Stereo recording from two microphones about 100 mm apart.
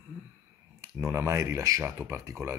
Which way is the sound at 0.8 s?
30° right (ahead or behind).